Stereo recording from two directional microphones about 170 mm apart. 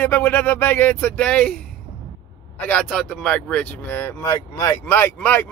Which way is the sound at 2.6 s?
5° left (ahead or behind).